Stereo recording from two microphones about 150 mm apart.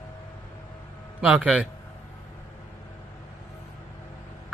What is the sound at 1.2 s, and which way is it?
Speech, 10° right (ahead or behind).